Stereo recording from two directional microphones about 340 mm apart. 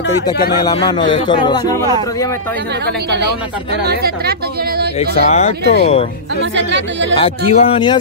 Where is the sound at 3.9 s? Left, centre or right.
Right.